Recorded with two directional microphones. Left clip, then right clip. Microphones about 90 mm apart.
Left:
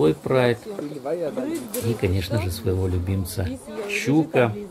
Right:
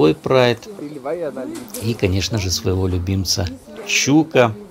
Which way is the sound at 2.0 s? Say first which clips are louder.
Right 4 dB; 30° right (ahead or behind).